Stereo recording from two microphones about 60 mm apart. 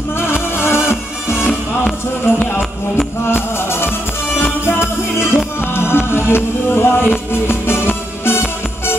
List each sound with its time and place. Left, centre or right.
0.3 s music: left